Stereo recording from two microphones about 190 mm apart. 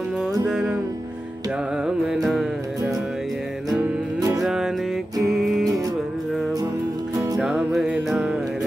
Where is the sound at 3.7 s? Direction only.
20° right (ahead or behind).